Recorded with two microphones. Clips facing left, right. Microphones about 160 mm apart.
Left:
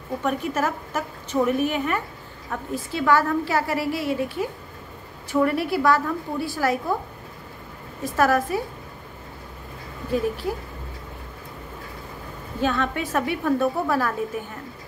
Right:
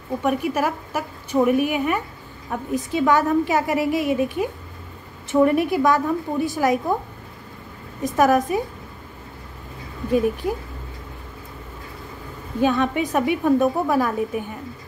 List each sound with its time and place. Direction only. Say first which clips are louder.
0.2 s a woman's voice: right 3 dB; 10° right (ahead or behind)
8.0 s a woman's voice: right 3 dB; 20° right (ahead or behind)
10.1 s a woman's voice: right 4 dB; 15° right (ahead or behind)
12.5 s a woman's voice: right 4 dB; 15° right (ahead or behind)